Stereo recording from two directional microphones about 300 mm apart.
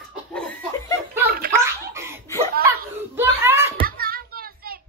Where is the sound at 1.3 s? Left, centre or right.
Right.